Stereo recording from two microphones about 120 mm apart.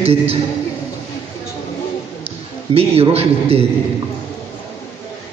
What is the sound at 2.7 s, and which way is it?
Speech, 45° right (ahead or behind).